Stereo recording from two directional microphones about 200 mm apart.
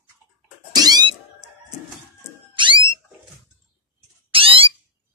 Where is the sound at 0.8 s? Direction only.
20° right (ahead or behind).